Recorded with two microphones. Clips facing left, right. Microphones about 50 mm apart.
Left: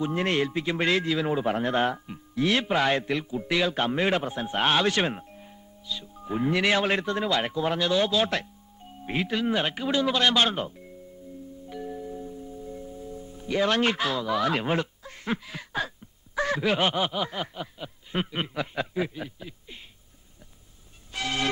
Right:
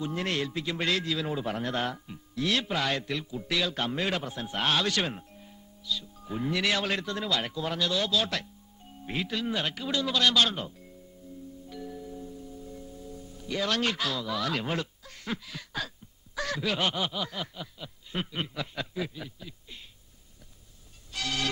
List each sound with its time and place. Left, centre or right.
0.0 s a man's voice: left
11.6 s music: left
16.3 s a man's voice: left
21.1 s music: left